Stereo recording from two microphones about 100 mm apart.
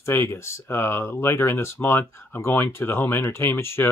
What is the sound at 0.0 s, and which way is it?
Speech, 25° left (ahead or behind).